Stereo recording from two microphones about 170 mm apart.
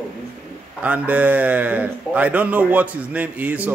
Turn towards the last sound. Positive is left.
turn(degrees=-10)  # may be behind; listen again after turning